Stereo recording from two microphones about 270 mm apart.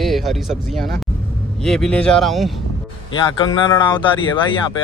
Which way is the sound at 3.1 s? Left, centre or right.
Centre.